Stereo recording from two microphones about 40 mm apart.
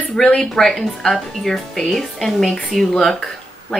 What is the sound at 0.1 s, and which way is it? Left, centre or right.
Speech, centre.